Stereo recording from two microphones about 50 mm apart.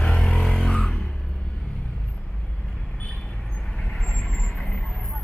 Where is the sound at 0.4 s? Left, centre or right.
Centre.